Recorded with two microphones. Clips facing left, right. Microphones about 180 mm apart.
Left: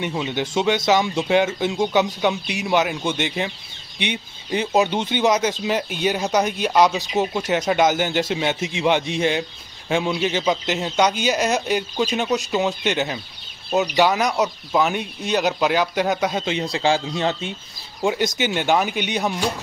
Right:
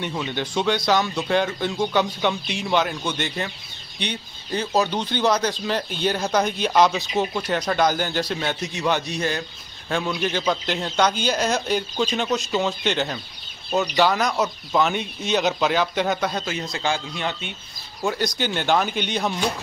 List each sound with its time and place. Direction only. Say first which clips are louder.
0.0 s a man's voice: left 3 dB; 15° left (ahead or behind)
7.2 s a man's voice: left 3 dB; 20° left (ahead or behind); by 16.4 s 5° left (ahead or behind)
16.7 s speech: left 6 dB; 30° left (ahead or behind)
18.0 s a man's voice: left 3 dB; 15° left (ahead or behind)